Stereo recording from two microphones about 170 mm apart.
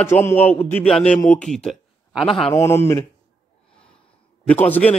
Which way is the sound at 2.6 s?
15° left (ahead or behind).